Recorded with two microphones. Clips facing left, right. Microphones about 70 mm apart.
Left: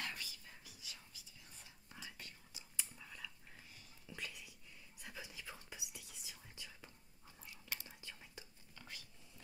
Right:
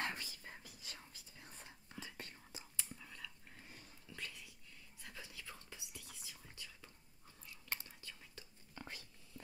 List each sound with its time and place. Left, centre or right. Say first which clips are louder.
0.0 s whispering: right 4 dB; right
2.8 s whispering: left 1 dB; centre
4.1 s dog: left 1 dB; centre
5.0 s whispering: left 2 dB; centre
8.7 s whispering: right 4 dB; right